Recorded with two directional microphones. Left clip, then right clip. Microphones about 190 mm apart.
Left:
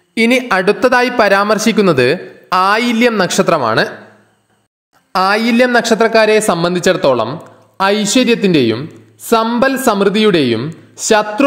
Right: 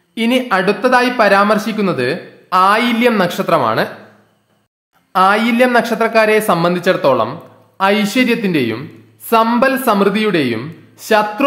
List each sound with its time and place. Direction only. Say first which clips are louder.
0.1 s speech: left 3 dB; 30° left (ahead or behind)
5.1 s a woman's voice: even; 25° left (ahead or behind)